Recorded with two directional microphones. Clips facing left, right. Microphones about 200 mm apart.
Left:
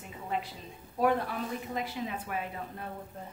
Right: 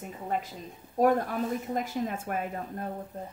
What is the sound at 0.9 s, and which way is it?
A woman's voice, 45° right (ahead or behind).